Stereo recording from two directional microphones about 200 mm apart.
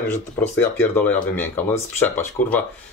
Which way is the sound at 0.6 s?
10° left (ahead or behind).